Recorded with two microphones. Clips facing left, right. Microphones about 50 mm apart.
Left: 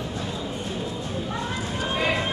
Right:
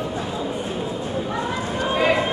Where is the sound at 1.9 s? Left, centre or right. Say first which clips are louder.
Right 6 dB; centre.